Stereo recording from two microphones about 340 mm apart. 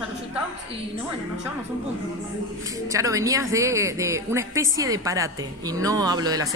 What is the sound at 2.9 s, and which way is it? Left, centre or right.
Speech, centre.